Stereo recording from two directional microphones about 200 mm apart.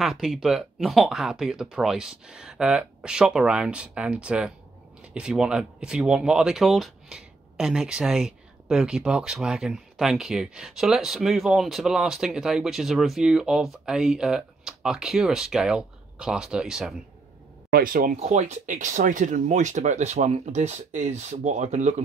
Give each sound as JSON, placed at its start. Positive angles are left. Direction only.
{"t": 0.0, "sound": "speech", "side_deg": 0}
{"t": 17.6, "sound": "speech", "side_deg": -45}